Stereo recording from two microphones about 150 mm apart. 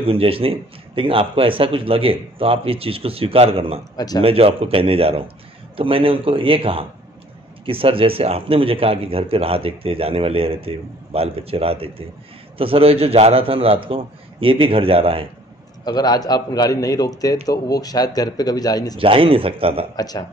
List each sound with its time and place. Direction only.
0.0 s a man's voice: 40° right (ahead or behind)
3.9 s a man's voice: 25° left (ahead or behind)
4.2 s a man's voice: 40° right (ahead or behind)
15.8 s a man's voice: 25° left (ahead or behind)
18.9 s a man's voice: 35° right (ahead or behind)
20.0 s a man's voice: 25° left (ahead or behind)